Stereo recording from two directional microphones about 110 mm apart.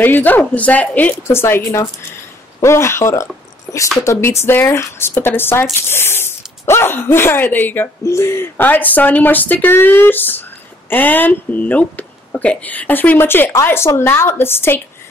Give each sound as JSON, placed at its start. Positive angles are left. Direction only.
{"t": 0.0, "sound": "speech", "side_deg": 15}